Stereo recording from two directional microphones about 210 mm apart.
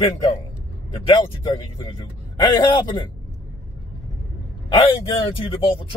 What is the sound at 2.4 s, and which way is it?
Speech, 20° left (ahead or behind).